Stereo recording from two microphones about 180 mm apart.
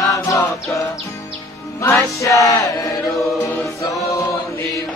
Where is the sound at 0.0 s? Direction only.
20° left (ahead or behind).